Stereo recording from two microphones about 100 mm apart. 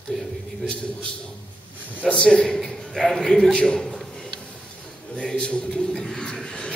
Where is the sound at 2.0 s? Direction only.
10° left (ahead or behind).